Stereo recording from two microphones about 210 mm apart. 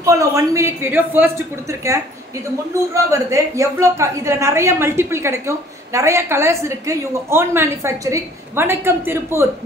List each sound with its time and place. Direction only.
0.0 s a woman's voice: 15° right (ahead or behind)